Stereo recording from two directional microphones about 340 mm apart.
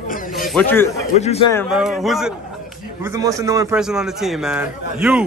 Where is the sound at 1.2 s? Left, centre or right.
Centre.